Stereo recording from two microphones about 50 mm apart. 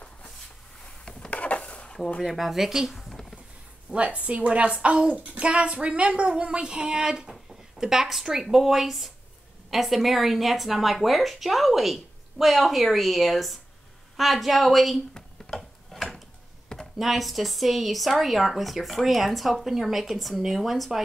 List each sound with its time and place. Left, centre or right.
1.3 s a sound: left
2.2 s speech: centre
3.0 s a sound: centre
3.9 s a woman's voice: right; by 15.0 s centre
15.5 s tick-tock: centre
17.0 s speech: centre